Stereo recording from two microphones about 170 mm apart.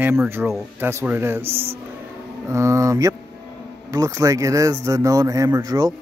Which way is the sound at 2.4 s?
15° right (ahead or behind).